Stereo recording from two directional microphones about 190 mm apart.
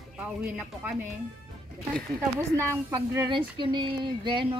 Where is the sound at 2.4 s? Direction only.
15° right (ahead or behind).